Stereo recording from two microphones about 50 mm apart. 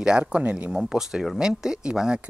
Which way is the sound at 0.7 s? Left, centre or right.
Centre.